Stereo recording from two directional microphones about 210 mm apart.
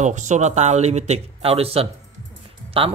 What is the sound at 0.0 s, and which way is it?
Speech, 35° right (ahead or behind).